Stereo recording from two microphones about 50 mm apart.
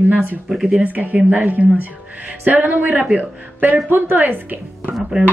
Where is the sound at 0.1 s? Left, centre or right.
Right.